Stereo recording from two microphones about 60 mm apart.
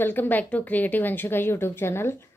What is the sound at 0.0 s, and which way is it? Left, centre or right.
A woman's voice, left.